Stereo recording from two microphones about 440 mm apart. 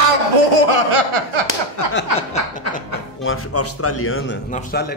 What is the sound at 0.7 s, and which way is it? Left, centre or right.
Speech, right.